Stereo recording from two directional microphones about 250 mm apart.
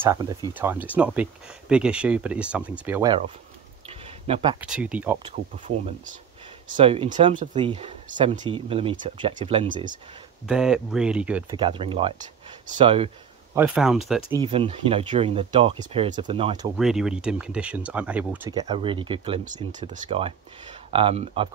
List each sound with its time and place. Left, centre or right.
0.0 s speech: centre
3.1 s speech: right
3.8 s a sound: right
4.6 s speech: centre
6.7 s speech: right
10.4 s speech: centre
11.5 s speech: right
13.6 s speech: centre
14.3 s speech: right
16.7 s speech: centre
18.5 s speech: centre